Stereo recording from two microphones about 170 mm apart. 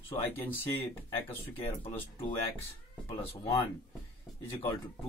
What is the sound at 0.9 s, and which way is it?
Speech, 10° left (ahead or behind).